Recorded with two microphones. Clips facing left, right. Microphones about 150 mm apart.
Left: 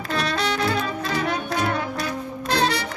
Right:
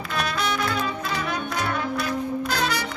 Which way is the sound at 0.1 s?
35° left (ahead or behind).